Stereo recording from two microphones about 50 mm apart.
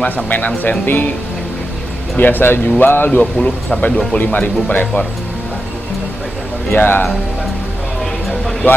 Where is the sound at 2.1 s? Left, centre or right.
Left.